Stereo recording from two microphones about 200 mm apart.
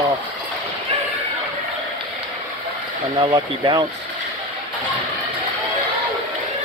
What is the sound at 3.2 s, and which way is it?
Speech, 25° right (ahead or behind).